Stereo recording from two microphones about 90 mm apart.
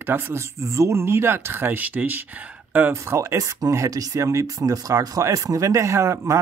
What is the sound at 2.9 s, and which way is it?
Speech, 30° right (ahead or behind).